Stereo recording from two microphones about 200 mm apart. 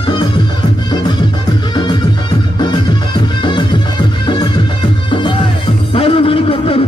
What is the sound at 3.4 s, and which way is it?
Music, 25° left (ahead or behind).